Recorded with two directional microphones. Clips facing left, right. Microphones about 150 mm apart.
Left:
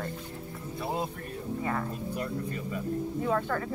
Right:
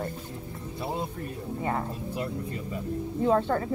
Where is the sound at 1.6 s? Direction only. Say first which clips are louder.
Right 3 dB; 30° right (ahead or behind).